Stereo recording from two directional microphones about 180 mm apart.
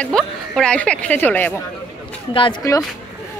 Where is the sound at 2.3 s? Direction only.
25° left (ahead or behind).